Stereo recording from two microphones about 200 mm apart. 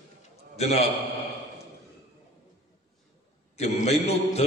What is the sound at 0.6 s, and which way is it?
Speech, 30° left (ahead or behind).